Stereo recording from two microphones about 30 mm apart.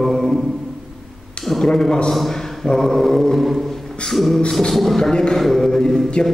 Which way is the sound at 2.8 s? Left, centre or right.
Centre.